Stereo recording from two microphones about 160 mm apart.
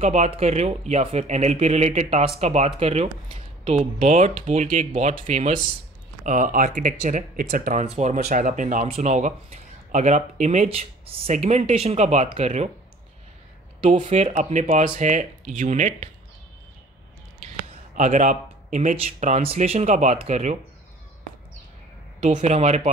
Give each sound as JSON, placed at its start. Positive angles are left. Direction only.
{"t": 0.0, "sound": "speech", "side_deg": -45}
{"t": 14.0, "sound": "speech", "side_deg": -50}
{"t": 17.9, "sound": "speech", "side_deg": -50}
{"t": 22.2, "sound": "speech", "side_deg": -45}